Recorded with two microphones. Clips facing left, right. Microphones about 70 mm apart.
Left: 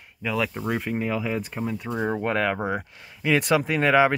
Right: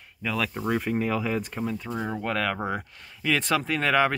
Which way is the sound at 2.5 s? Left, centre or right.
Centre.